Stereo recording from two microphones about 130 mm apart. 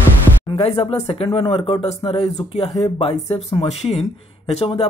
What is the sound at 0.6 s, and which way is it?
Speech, 50° left (ahead or behind).